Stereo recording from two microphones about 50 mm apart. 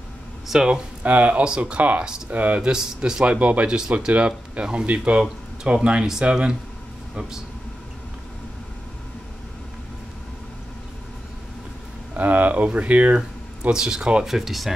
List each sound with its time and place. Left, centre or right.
0.5 s a man's voice: centre
1.0 s speech: right
2.7 s a man's voice: centre
12.1 s speech: right
13.6 s a man's voice: centre
14.2 s speech: centre